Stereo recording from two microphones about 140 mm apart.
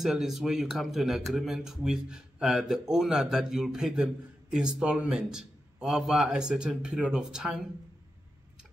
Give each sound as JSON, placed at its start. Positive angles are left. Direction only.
{"t": 0.0, "sound": "a man's voice", "side_deg": 0}